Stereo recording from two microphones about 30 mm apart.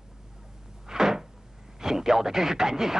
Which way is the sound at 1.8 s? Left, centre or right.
Centre.